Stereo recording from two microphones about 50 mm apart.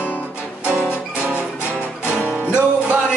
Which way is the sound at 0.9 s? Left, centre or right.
Right.